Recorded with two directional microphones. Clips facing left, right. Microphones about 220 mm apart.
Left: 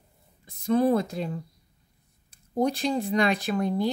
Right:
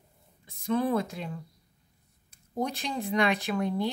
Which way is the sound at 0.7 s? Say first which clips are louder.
Left 5 dB; 40° left (ahead or behind).